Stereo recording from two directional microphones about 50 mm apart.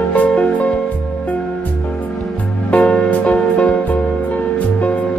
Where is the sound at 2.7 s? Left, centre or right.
Left.